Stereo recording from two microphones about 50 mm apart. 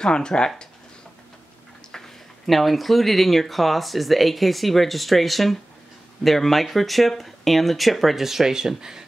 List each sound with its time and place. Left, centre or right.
0.0 s speech: centre
1.9 s speech: centre